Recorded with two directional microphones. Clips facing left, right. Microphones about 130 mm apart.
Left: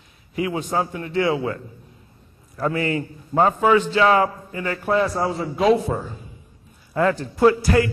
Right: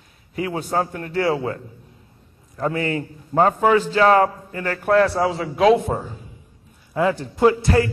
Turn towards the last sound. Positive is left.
turn(degrees=-20)  # may be behind; listen again after turning